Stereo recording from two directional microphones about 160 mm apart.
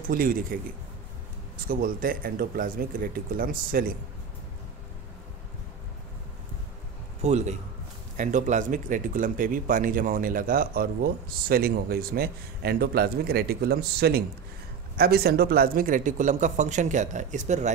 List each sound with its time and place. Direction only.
0.1 s speech: 65° right (ahead or behind)
1.7 s speech: 65° right (ahead or behind)
7.2 s a man's voice: 45° right (ahead or behind)